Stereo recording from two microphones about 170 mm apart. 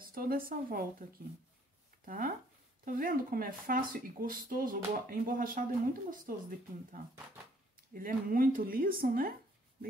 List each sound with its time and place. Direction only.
0.0 s speech: 60° right (ahead or behind)
2.0 s speech: 55° right (ahead or behind)